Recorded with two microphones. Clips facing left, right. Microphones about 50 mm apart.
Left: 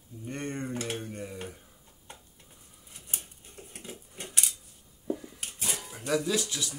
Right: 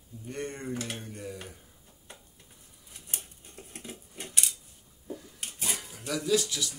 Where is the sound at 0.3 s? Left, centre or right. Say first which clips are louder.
Left 1 dB; left.